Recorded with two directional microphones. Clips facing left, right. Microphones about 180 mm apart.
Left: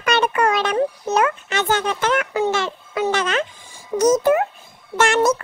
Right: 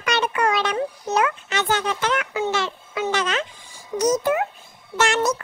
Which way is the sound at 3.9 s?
50° left (ahead or behind).